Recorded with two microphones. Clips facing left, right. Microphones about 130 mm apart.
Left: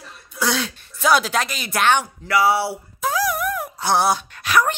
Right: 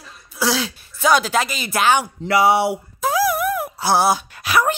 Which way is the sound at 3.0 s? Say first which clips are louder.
Right 3 dB; 10° right (ahead or behind).